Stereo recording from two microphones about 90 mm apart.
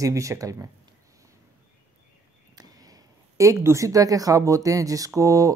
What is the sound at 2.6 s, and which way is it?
Speech, 45° right (ahead or behind).